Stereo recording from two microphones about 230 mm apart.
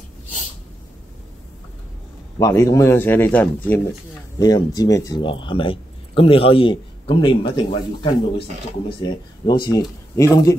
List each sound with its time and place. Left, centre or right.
2.3 s speech: centre